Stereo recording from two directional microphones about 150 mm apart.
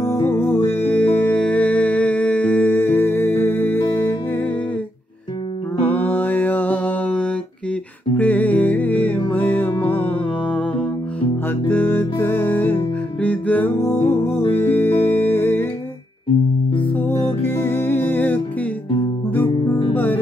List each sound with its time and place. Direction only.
0.0 s music: 15° left (ahead or behind)
5.9 s mantra: 10° left (ahead or behind)
8.2 s music: 10° left (ahead or behind)
16.9 s music: 15° left (ahead or behind)
19.9 s guitar: 10° left (ahead or behind)